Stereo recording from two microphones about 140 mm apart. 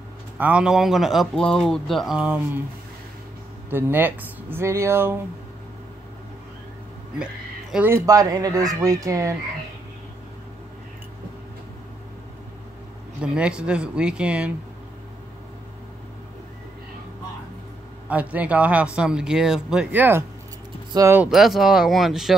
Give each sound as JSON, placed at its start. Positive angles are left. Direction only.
{"t": 0.4, "sound": "speech", "side_deg": -10}
{"t": 3.7, "sound": "speech", "side_deg": -15}
{"t": 7.7, "sound": "speech", "side_deg": -15}
{"t": 13.2, "sound": "speech", "side_deg": -5}
{"t": 18.0, "sound": "speech", "side_deg": -10}
{"t": 21.2, "sound": "speech", "side_deg": 0}